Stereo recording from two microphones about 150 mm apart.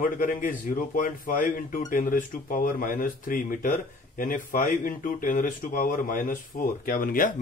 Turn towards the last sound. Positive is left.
turn(degrees=70)  # may be behind; listen again after turning